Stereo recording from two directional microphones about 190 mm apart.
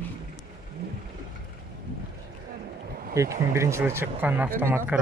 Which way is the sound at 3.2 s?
15° right (ahead or behind).